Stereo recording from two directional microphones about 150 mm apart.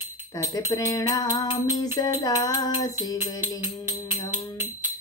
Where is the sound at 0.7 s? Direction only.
25° left (ahead or behind).